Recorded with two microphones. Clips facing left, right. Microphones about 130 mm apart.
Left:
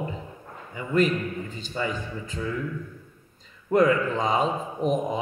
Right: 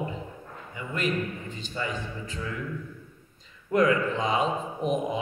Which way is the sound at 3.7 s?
40° left (ahead or behind).